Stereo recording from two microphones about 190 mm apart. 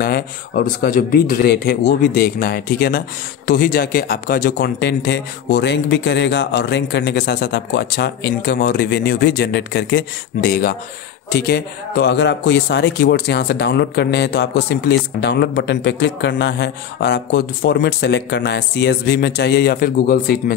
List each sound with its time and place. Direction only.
0.0 s a man's voice: 50° left (ahead or behind)